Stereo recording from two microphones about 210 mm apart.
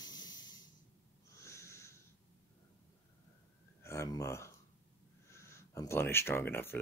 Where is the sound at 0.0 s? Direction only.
20° left (ahead or behind).